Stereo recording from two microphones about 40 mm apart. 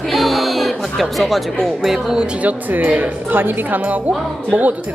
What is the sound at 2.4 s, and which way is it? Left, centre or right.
Speech, right.